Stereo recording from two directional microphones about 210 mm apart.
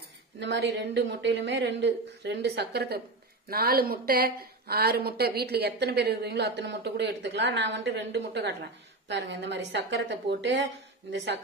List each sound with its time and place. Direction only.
0.4 s a woman's voice: 55° right (ahead or behind)